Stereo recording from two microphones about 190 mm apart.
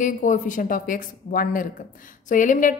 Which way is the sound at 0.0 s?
45° left (ahead or behind).